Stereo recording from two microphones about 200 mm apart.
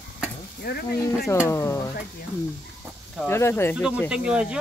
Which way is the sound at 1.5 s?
15° left (ahead or behind).